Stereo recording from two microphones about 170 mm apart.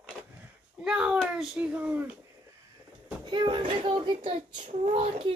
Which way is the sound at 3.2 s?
30° right (ahead or behind).